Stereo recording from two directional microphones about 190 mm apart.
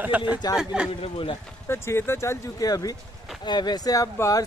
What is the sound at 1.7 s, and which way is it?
Speech, 15° left (ahead or behind).